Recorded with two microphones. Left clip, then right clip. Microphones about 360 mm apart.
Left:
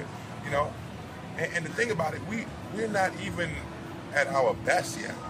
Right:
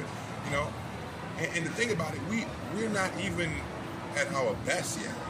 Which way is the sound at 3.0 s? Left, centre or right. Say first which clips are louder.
Left 5 dB; centre.